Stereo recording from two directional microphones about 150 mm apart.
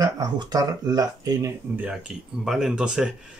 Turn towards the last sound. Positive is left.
turn(degrees=-5)  # may be behind; listen again after turning